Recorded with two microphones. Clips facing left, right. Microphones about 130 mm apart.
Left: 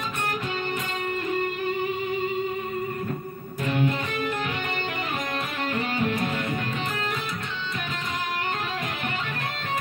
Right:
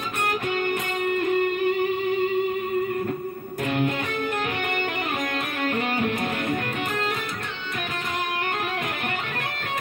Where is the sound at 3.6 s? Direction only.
50° right (ahead or behind).